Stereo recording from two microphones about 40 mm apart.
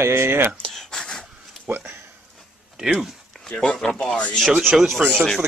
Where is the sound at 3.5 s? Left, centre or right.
Left.